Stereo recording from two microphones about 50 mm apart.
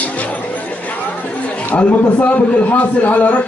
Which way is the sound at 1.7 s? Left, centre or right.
Left.